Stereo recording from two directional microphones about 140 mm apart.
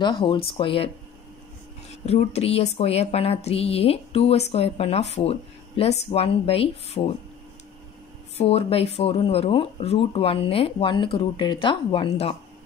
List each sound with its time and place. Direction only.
0.0 s speech: 35° left (ahead or behind)
2.0 s a woman's voice: 45° left (ahead or behind)
8.4 s speech: 45° left (ahead or behind)